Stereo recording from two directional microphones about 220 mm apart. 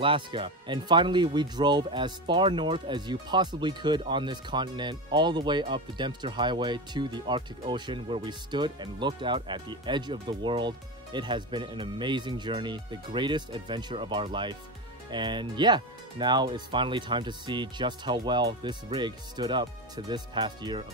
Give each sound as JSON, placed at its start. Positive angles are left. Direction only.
{"t": 0.0, "sound": "speech", "side_deg": -25}